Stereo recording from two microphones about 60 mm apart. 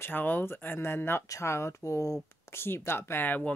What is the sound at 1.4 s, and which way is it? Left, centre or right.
Speech, left.